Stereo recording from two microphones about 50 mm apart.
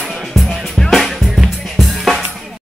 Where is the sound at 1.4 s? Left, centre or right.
Centre.